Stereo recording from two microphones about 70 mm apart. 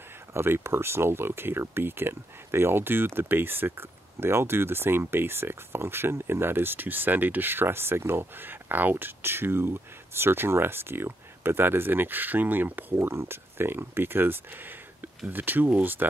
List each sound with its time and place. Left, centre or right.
0.3 s speech: right
12.9 s speech: right